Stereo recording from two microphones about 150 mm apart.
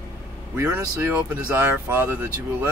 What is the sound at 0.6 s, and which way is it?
Speech, 15° right (ahead or behind).